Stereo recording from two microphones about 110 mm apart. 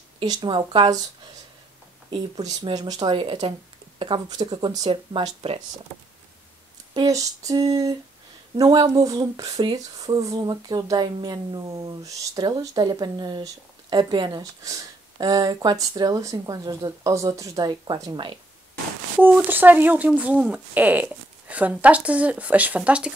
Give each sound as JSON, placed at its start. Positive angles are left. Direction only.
{"t": 0.2, "sound": "speech", "side_deg": -45}
{"t": 2.0, "sound": "speech", "side_deg": -45}
{"t": 6.9, "sound": "speech", "side_deg": -35}
{"t": 19.2, "sound": "speech", "side_deg": -15}